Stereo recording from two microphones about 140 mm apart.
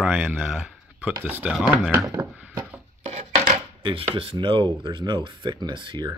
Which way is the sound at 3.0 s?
55° right (ahead or behind).